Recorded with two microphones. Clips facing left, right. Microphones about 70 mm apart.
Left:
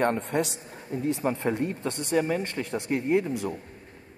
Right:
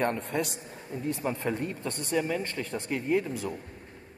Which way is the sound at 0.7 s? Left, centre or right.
Left.